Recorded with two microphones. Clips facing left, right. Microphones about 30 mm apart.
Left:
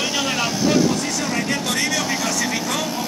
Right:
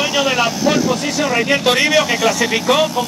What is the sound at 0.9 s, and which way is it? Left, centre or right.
A man's voice, right.